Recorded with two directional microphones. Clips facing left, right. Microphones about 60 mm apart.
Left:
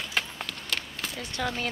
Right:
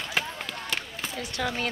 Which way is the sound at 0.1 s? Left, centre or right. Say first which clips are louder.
Right 2 dB; centre.